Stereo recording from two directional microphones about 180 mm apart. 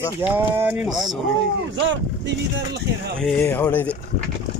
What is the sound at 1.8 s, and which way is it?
Speech, 80° right.